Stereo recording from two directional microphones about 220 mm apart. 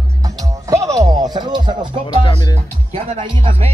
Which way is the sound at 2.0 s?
20° left (ahead or behind).